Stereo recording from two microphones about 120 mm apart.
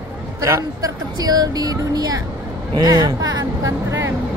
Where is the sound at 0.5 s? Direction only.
30° right (ahead or behind).